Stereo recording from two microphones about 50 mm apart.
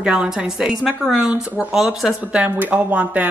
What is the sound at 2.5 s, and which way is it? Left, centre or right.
Speech, right.